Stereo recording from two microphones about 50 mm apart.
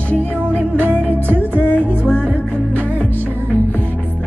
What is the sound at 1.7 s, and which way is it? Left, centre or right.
Music, left.